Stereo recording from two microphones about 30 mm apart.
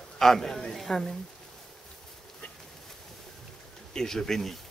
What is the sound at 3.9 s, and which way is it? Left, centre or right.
Speech, centre.